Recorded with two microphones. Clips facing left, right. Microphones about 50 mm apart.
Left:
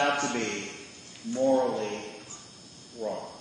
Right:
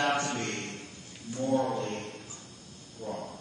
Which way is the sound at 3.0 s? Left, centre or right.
Left.